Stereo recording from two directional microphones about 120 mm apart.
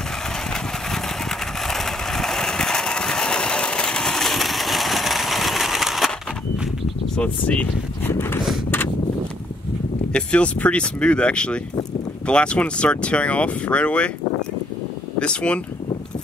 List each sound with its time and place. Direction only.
0.5 s vehicle: 5° left (ahead or behind)
7.2 s speech: 10° left (ahead or behind)
8.6 s a sound: 15° left (ahead or behind)
10.1 s speech: 10° left (ahead or behind)
15.1 s speech: 10° left (ahead or behind)